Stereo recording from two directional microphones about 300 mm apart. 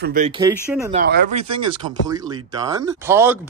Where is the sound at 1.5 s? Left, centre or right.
Centre.